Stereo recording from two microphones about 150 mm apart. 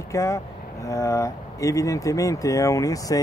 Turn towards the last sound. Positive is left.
turn(degrees=20)  # may be behind; listen again after turning